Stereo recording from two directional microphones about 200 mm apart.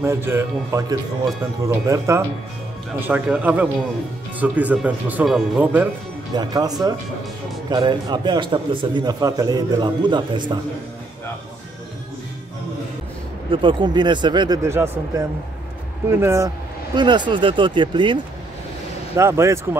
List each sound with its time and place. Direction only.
0.0 s speech: 10° right (ahead or behind)
6.3 s a man's voice: 20° right (ahead or behind)
13.5 s a man's voice: 25° right (ahead or behind)
19.1 s speech: 15° right (ahead or behind)